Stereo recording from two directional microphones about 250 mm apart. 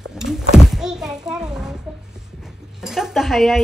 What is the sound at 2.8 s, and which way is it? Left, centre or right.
Speech, centre.